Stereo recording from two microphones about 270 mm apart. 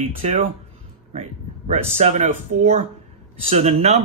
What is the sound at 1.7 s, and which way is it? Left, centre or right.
Speech, right.